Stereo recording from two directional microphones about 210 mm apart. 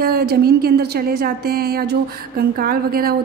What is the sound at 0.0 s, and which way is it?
A woman's voice, 45° right (ahead or behind).